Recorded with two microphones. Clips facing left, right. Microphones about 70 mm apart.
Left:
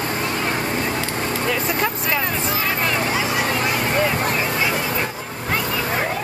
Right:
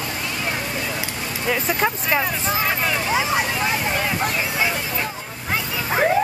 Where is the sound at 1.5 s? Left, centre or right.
Centre.